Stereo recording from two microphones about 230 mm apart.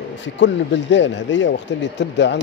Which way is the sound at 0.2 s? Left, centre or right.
Left.